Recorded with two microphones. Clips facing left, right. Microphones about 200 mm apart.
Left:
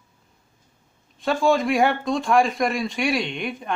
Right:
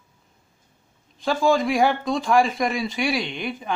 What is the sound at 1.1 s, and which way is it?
Speech, centre (ahead or behind).